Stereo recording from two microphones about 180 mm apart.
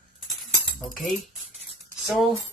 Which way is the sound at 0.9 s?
Centre (ahead or behind).